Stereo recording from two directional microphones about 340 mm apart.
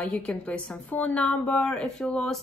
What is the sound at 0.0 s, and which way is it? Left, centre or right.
A woman's voice, centre.